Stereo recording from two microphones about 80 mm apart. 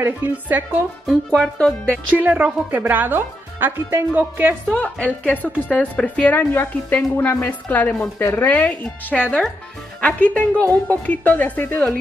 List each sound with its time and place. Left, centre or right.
0.0 s speech: right
1.0 s speech: centre
1.6 s speech: centre
2.1 s speech: centre
4.7 s speech: centre